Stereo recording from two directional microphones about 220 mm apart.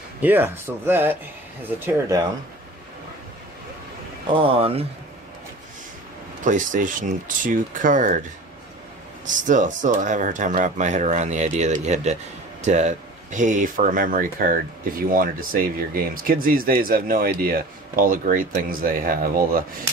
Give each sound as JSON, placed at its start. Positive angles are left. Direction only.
{"t": 0.2, "sound": "speech", "side_deg": -10}
{"t": 4.3, "sound": "speech", "side_deg": -25}
{"t": 6.4, "sound": "speech", "side_deg": -35}
{"t": 9.3, "sound": "speech", "side_deg": -35}